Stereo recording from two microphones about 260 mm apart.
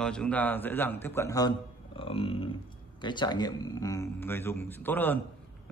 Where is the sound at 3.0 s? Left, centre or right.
Centre.